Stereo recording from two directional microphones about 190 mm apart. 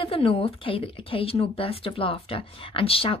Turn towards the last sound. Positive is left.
turn(degrees=30)  # may be behind; listen again after turning